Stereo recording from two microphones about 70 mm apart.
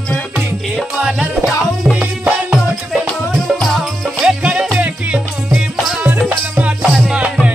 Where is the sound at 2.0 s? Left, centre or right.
Right.